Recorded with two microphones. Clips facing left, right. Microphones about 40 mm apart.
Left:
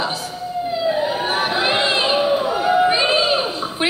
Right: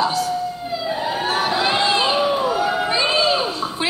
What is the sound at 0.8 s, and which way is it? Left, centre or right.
Emergency vehicle, centre.